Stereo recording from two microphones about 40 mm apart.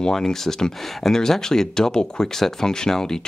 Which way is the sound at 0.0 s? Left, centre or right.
Centre.